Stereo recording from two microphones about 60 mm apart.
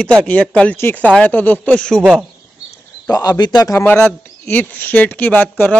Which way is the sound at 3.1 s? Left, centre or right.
Left.